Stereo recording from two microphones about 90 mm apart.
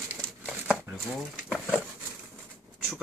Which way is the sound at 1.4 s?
5° right (ahead or behind).